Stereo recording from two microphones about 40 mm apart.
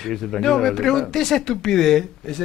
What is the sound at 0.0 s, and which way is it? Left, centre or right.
Speech, centre.